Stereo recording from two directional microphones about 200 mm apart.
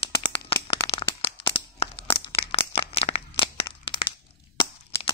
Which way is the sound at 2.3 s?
30° left (ahead or behind).